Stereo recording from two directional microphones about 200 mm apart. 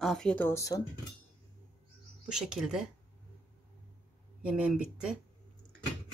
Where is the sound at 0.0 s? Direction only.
5° left (ahead or behind).